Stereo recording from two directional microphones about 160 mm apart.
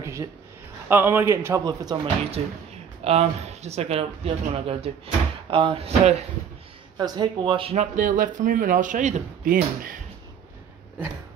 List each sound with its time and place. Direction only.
0.0 s a sound: 20° right (ahead or behind)
0.8 s a man's voice: 15° right (ahead or behind)
2.4 s speech: 40° right (ahead or behind)
7.0 s speech: 30° right (ahead or behind); by 9.9 s 60° right (ahead or behind)